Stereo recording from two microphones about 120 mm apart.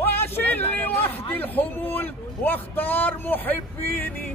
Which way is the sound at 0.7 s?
15° left (ahead or behind).